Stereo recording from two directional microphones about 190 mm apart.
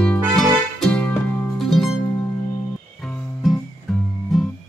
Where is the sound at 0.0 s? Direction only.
5° left (ahead or behind).